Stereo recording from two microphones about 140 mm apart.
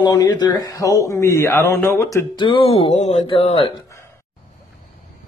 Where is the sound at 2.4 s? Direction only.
35° left (ahead or behind); by 3.2 s 55° left (ahead or behind).